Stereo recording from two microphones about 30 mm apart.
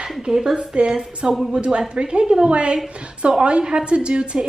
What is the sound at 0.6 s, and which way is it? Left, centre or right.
A woman's voice, right.